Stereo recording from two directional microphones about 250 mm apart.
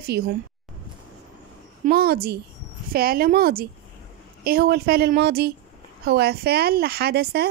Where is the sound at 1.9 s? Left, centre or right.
Right.